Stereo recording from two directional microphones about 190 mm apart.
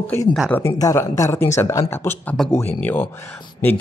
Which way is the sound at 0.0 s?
10° left (ahead or behind).